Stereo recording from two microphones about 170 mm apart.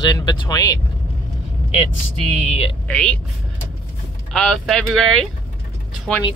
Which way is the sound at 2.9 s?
5° left (ahead or behind).